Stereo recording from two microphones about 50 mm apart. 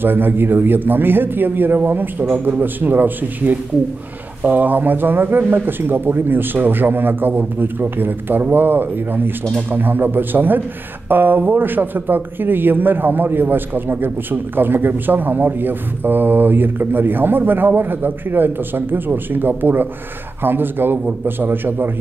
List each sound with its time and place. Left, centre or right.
0.0 s speech: right
2.3 s a man's voice: right
2.6 s speech: right